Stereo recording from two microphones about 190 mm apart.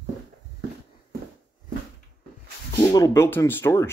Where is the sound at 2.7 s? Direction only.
20° left (ahead or behind).